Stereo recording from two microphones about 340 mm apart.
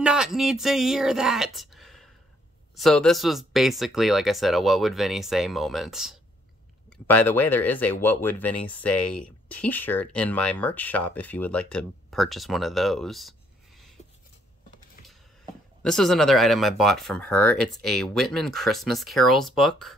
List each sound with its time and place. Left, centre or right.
0.0 s speech: centre
15.8 s speech: centre